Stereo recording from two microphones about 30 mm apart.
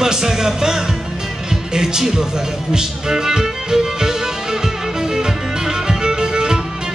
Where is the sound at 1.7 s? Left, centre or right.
Centre.